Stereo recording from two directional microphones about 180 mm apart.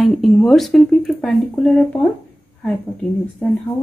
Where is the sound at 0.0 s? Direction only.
Centre (ahead or behind).